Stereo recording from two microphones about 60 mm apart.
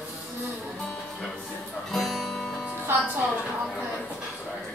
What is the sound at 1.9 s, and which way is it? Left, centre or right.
Music, centre.